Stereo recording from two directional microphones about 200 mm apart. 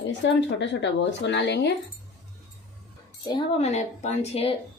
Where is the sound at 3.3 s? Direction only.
30° left (ahead or behind).